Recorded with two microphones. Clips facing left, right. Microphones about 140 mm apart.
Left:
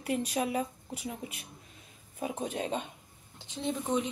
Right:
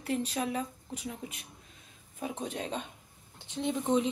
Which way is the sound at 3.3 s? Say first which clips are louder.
Right 1 dB; 15° right (ahead or behind).